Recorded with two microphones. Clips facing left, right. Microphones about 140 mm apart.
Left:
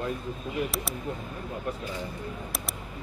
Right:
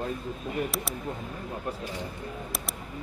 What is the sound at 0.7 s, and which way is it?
Speech, centre (ahead or behind).